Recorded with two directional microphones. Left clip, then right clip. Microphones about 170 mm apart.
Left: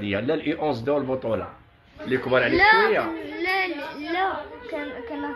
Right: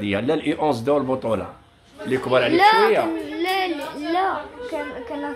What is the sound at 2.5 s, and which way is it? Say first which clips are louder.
Speech: right 2 dB; 15° right (ahead or behind).